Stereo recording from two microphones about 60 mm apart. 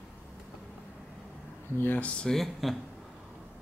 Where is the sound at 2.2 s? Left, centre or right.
Centre.